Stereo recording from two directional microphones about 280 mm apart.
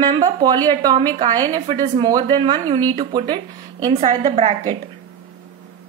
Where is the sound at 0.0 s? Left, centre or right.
Centre.